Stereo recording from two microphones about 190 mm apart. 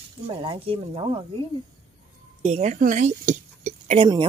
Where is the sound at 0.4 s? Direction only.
30° right (ahead or behind).